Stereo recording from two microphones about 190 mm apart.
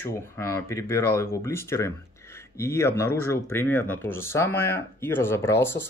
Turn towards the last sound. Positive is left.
turn(degrees=10)  # may be behind; listen again after turning